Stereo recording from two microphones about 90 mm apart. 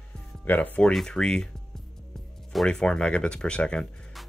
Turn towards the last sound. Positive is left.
turn(degrees=10)  # may be behind; listen again after turning